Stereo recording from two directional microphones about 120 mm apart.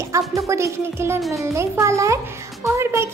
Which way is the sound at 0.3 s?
25° right (ahead or behind).